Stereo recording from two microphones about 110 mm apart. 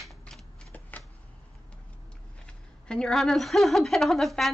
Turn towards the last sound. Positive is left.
turn(degrees=0)  # may be behind; listen again after turning